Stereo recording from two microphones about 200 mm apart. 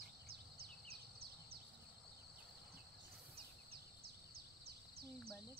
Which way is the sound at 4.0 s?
50° right (ahead or behind).